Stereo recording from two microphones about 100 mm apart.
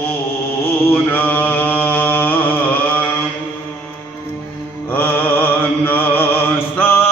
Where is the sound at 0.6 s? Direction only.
20° left (ahead or behind).